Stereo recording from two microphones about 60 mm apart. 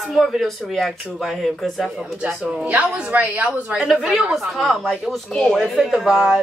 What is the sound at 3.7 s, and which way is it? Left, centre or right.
Speech, centre.